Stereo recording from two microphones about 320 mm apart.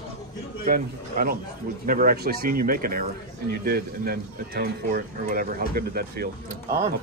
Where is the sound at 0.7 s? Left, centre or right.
Right.